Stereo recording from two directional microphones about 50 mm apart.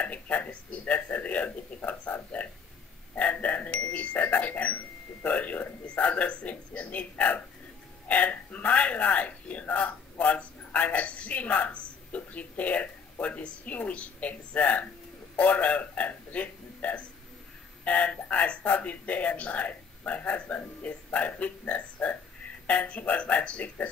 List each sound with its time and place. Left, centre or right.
0.0 s speech: left
3.2 s a man's voice: left